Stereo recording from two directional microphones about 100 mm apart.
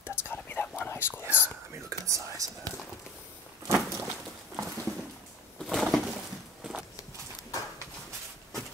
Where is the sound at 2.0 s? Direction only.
35° right (ahead or behind).